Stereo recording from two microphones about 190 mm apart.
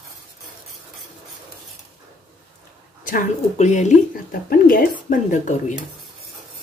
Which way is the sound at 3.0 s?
40° left (ahead or behind).